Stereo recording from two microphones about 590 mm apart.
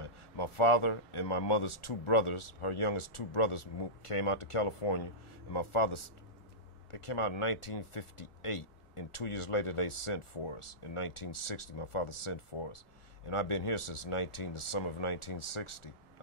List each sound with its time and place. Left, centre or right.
0.0 s speech: left